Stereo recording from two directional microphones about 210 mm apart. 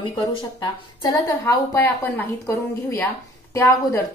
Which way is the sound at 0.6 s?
20° left (ahead or behind).